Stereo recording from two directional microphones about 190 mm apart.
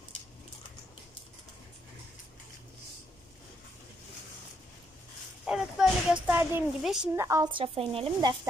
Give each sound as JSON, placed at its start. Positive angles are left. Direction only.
{"t": 5.4, "sound": "a woman's voice", "side_deg": -5}
{"t": 7.2, "sound": "speech", "side_deg": -15}